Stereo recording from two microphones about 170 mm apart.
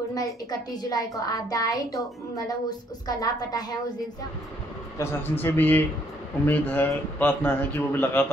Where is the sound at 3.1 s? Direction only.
20° left (ahead or behind).